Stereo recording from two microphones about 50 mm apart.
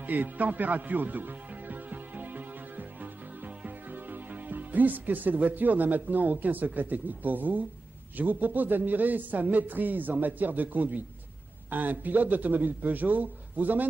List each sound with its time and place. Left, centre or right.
0.0 s music: right
8.2 s a man's voice: right